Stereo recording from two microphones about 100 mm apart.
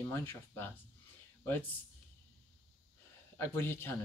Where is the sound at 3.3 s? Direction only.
25° left (ahead or behind).